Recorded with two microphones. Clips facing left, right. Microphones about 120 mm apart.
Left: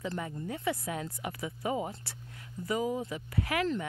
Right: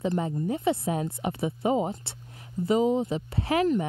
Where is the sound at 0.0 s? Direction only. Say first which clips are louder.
Right 9 dB; 25° right (ahead or behind).